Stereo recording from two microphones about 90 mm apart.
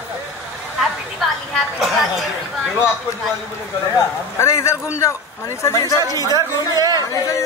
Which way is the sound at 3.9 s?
30° left (ahead or behind).